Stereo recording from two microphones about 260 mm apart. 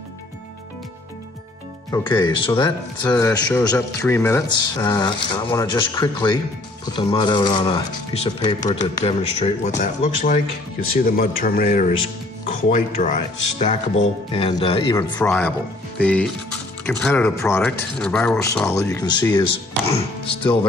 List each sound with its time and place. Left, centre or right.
1.9 s speech: centre
3.1 s speech: centre
15.1 s speech: centre